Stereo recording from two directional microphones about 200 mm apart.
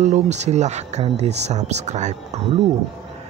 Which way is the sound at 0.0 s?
35° right (ahead or behind).